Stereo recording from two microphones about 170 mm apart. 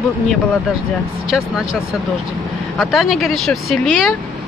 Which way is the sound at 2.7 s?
Centre (ahead or behind).